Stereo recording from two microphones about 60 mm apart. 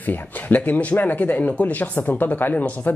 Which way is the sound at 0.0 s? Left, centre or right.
Left.